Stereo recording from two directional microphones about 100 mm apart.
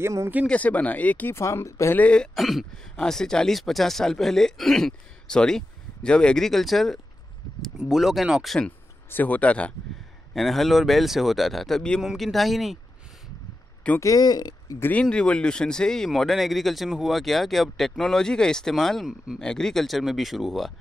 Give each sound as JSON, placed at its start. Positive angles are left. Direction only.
{"t": 0.0, "sound": "speech", "side_deg": -30}
{"t": 0.5, "sound": "speech", "side_deg": 15}
{"t": 1.3, "sound": "speech", "side_deg": 30}
{"t": 2.0, "sound": "speech", "side_deg": 10}
{"t": 2.3, "sound": "speech", "side_deg": 0}
{"t": 8.5, "sound": "speech", "side_deg": 15}
{"t": 10.3, "sound": "speech", "side_deg": 0}
{"t": 13.9, "sound": "speech", "side_deg": 35}
{"t": 14.8, "sound": "speech", "side_deg": 15}